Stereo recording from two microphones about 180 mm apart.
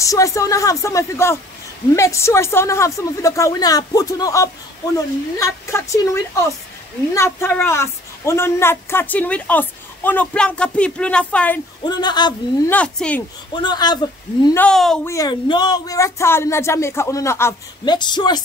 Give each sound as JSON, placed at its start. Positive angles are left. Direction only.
{"t": 0.0, "sound": "a woman's voice", "side_deg": 15}
{"t": 11.8, "sound": "speech", "side_deg": 25}
{"t": 12.6, "sound": "a woman's voice", "side_deg": 5}
{"t": 13.5, "sound": "speech", "side_deg": 25}
{"t": 14.4, "sound": "a woman's voice", "side_deg": 15}
{"t": 14.7, "sound": "speech", "side_deg": 5}
{"t": 15.0, "sound": "a woman's voice", "side_deg": 20}